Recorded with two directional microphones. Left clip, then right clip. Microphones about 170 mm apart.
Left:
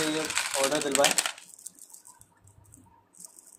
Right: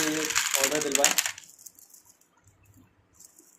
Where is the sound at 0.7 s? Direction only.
15° left (ahead or behind).